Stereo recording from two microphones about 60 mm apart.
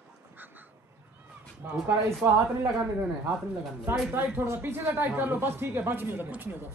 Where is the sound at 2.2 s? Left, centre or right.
Right.